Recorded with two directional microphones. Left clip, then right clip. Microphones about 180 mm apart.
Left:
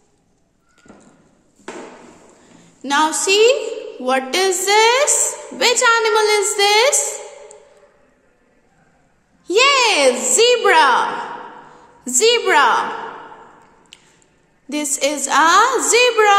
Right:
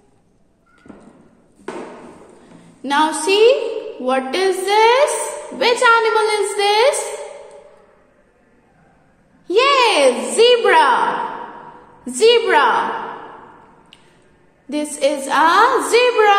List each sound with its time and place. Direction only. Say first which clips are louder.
2.4 s a woman's voice: right 1 dB; 25° left (ahead or behind)
9.5 s a sound: even; 30° left (ahead or behind)
12.0 s a woman's voice: right 2 dB; 30° left (ahead or behind)
13.9 s drip: left 6 dB; 30° left (ahead or behind)
14.7 s a woman's voice: right 2 dB; 30° left (ahead or behind)